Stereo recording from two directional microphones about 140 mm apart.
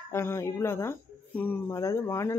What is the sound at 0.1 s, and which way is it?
Speech, 20° left (ahead or behind).